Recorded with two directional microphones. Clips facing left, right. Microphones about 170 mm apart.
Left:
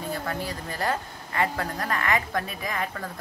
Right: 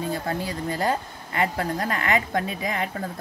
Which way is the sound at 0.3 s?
20° right (ahead or behind).